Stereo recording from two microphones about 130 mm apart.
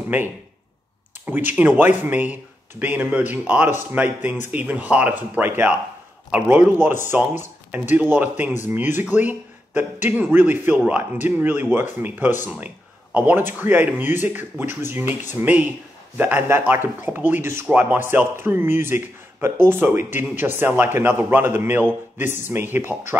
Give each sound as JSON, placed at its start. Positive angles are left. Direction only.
{"t": 0.1, "sound": "speech", "side_deg": -15}